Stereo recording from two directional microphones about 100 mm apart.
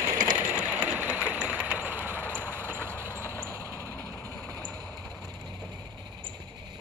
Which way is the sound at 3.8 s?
25° left (ahead or behind).